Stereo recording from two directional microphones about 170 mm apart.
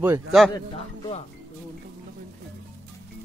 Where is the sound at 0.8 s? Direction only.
35° left (ahead or behind).